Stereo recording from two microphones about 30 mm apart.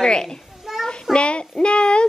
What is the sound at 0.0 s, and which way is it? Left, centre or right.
Speech, left.